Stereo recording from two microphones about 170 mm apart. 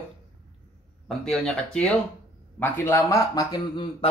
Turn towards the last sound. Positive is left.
turn(degrees=30)  # may be behind; listen again after turning